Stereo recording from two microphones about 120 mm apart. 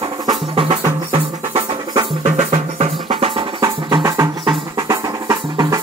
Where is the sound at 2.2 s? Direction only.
65° right (ahead or behind).